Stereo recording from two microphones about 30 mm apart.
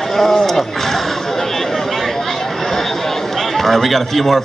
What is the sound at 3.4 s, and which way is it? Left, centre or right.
A man's voice, centre.